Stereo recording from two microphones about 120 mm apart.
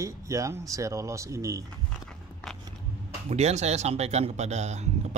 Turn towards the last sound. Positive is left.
turn(degrees=-65)  # may be behind; listen again after turning